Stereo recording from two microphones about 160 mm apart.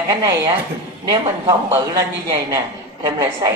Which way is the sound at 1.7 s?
20° right (ahead or behind).